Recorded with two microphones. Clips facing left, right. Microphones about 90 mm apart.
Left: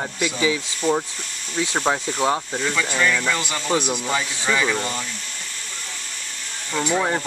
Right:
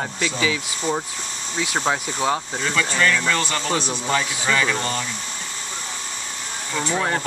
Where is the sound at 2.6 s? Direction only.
10° left (ahead or behind).